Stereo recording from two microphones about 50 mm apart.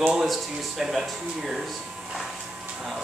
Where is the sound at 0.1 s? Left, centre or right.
Centre.